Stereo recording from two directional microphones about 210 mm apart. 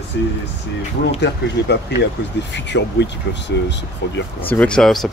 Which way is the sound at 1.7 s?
55° left (ahead or behind).